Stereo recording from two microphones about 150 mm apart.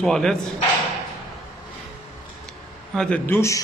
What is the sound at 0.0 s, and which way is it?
Speech, centre (ahead or behind).